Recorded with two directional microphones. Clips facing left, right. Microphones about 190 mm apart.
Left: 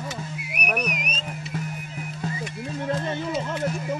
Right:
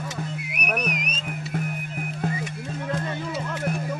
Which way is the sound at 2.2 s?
55° right (ahead or behind).